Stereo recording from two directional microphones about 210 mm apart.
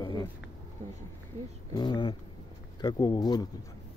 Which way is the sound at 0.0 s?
20° left (ahead or behind).